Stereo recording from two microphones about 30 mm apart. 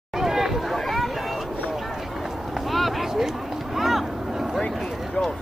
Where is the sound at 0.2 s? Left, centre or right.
Centre.